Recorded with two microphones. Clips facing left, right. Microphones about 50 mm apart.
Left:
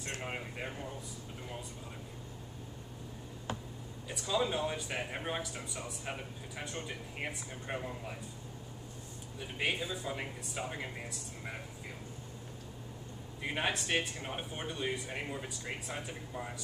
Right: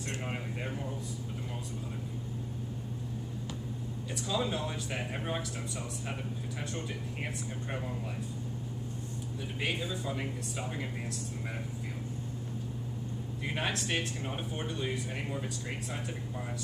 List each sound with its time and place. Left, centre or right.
0.2 s speech: centre
4.1 s speech: centre
9.6 s speech: centre
13.4 s speech: centre